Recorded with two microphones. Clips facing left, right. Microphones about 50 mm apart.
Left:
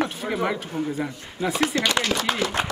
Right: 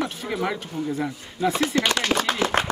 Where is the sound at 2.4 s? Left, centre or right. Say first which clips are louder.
Right 3 dB; right.